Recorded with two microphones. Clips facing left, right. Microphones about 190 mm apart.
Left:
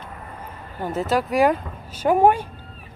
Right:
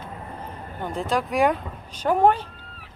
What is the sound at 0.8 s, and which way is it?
Speech, 5° left (ahead or behind).